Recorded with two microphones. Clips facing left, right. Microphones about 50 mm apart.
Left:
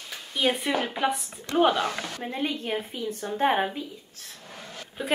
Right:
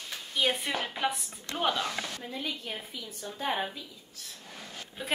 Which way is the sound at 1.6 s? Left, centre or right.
Left.